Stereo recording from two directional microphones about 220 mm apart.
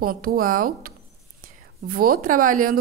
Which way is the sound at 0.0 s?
40° right (ahead or behind).